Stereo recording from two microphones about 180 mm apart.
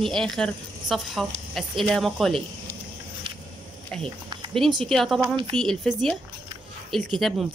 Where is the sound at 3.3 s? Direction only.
30° right (ahead or behind).